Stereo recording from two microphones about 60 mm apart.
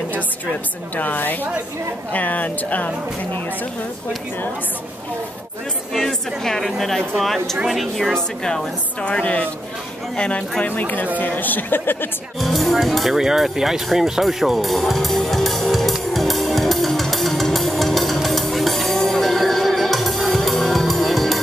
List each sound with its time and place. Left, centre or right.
0.9 s a woman's voice: left
5.9 s a woman's voice: centre
9.0 s a woman's voice: left
10.8 s a woman's voice: left
12.4 s music: centre